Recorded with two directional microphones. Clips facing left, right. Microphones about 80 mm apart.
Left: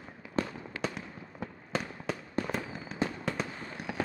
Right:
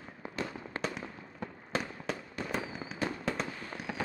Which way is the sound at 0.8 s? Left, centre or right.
Centre.